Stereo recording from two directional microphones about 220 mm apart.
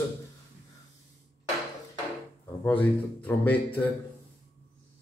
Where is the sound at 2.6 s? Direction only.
10° left (ahead or behind).